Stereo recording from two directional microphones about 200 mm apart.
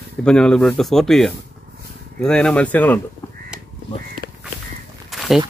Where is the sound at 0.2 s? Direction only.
5° left (ahead or behind).